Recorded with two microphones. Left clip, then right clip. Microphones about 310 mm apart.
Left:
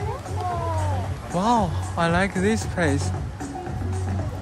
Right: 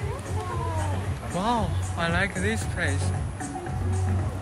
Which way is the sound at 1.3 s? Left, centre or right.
Centre.